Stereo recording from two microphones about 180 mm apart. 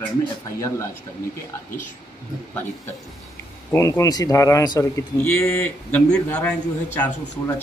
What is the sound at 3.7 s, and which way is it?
Speech, 15° left (ahead or behind).